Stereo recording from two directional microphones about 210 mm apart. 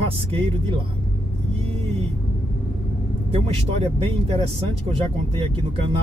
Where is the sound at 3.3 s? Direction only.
30° right (ahead or behind).